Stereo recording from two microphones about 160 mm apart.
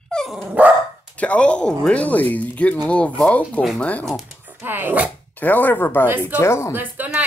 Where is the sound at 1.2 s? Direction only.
5° left (ahead or behind).